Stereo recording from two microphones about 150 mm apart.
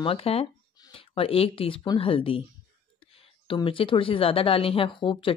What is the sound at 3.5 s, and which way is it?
A woman's voice, 35° left (ahead or behind).